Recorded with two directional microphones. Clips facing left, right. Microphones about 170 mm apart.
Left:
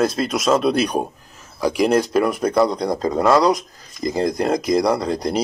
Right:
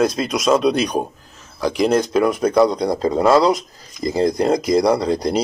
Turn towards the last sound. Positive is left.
turn(degrees=0)  # may be behind; listen again after turning